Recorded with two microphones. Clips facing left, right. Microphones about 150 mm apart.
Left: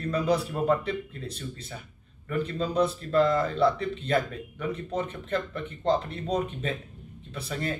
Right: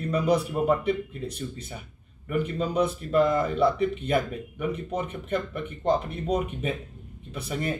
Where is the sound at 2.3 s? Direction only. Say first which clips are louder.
Right 1 dB; 15° right (ahead or behind).